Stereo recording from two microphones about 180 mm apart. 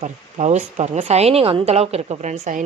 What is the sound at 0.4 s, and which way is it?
A woman's voice, 40° right (ahead or behind).